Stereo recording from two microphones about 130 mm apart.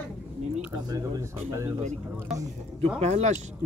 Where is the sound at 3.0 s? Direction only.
60° right (ahead or behind).